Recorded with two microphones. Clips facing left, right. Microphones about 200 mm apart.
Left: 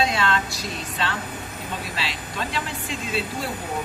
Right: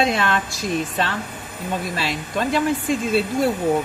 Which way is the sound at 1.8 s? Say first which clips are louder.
Right 6 dB; 45° right (ahead or behind).